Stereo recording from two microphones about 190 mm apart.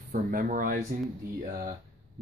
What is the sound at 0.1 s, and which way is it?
Speech, 45° right (ahead or behind).